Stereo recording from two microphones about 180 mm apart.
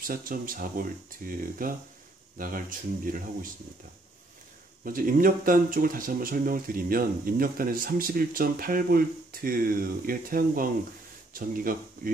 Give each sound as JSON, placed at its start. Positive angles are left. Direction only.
{"t": 0.0, "sound": "speech", "side_deg": -50}
{"t": 4.8, "sound": "speech", "side_deg": -50}